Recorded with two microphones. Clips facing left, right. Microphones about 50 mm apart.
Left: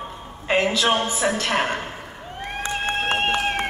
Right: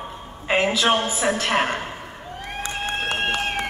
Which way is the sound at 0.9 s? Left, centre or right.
Centre.